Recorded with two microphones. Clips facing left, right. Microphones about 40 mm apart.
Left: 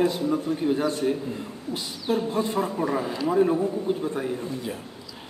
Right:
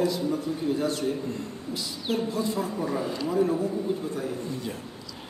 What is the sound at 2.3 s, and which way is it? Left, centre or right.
Speech, left.